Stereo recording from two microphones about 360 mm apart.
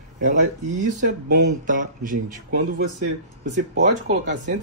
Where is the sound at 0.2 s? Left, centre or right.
Right.